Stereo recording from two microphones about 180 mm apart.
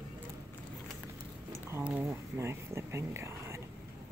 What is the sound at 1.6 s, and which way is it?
Speech, 10° right (ahead or behind).